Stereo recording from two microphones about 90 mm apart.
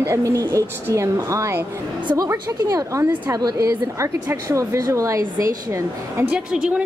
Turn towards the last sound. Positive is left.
turn(degrees=-10)  # may be behind; listen again after turning